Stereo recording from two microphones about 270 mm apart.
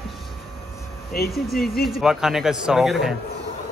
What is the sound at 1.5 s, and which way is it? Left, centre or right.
Speech, left.